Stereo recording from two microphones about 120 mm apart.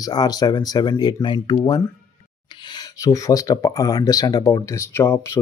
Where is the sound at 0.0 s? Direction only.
35° left (ahead or behind).